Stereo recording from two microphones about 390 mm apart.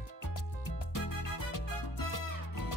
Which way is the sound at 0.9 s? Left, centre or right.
Left.